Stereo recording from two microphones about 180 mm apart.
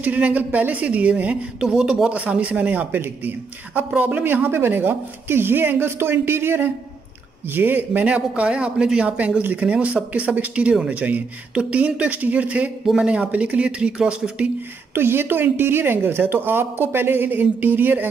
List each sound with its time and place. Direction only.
0.0 s speech: 10° right (ahead or behind)